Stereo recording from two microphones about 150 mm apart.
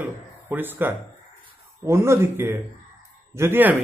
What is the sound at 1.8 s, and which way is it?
Speech, 15° right (ahead or behind).